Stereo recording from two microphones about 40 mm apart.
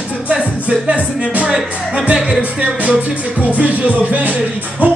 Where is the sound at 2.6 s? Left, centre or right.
Right.